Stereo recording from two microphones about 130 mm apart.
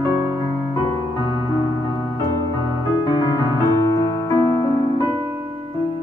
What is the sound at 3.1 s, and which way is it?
Music, 35° left (ahead or behind).